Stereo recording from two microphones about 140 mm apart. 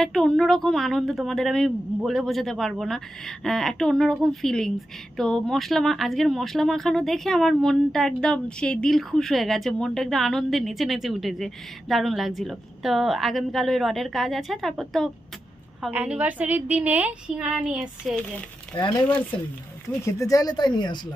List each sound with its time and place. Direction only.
0.0 s speech: 5° left (ahead or behind)
15.9 s a woman's voice: 10° right (ahead or behind)
18.7 s speech: 35° left (ahead or behind)
20.1 s speech: 25° left (ahead or behind)